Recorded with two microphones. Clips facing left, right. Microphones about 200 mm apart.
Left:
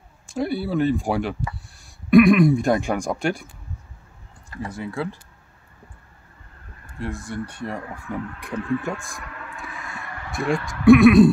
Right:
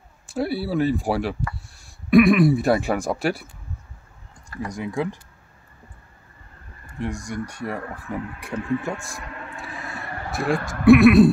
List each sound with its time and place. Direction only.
0.3 s speech: 5° right (ahead or behind)
4.6 s speech: 15° right (ahead or behind)
7.0 s speech: 15° right (ahead or behind)
9.2 s a sound: 30° right (ahead or behind)
10.4 s speech: 50° right (ahead or behind)
10.9 s speech: centre (ahead or behind)